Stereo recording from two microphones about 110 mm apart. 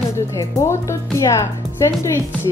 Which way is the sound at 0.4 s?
25° left (ahead or behind).